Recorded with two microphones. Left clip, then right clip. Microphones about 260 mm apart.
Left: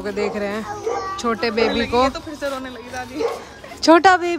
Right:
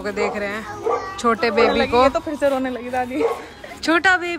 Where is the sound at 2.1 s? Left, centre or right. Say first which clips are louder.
Right 7 dB; right.